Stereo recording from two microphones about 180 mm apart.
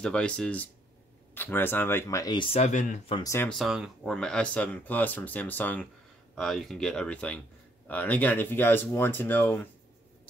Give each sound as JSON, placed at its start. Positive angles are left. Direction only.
{"t": 0.0, "sound": "speech", "side_deg": 5}
{"t": 2.6, "sound": "speech", "side_deg": 45}
{"t": 3.3, "sound": "speech", "side_deg": 15}
{"t": 3.5, "sound": "speech", "side_deg": -5}